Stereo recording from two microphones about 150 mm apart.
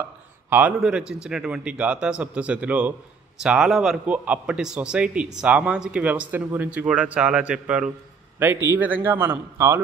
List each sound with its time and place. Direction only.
0.5 s a man's voice: 10° right (ahead or behind)